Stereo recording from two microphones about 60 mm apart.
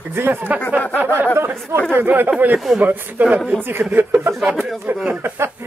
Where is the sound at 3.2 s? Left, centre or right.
Right.